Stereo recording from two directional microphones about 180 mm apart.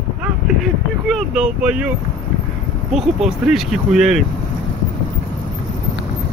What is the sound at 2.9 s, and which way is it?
Speech, centre (ahead or behind).